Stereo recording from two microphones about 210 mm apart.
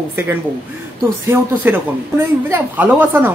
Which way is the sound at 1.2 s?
10° right (ahead or behind).